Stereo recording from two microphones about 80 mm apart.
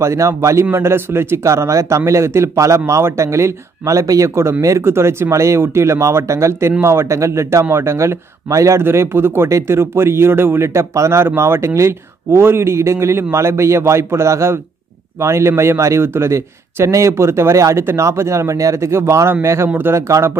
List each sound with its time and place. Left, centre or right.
0.0 s speech: right